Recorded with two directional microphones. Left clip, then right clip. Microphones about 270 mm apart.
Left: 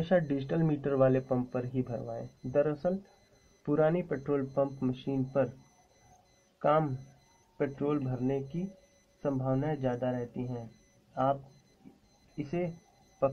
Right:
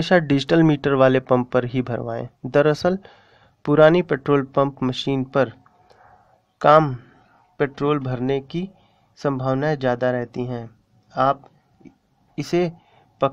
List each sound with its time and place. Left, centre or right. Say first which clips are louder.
0.0 s speech: right 11 dB; right
6.6 s speech: right 14 dB; right
12.4 s speech: right 13 dB; right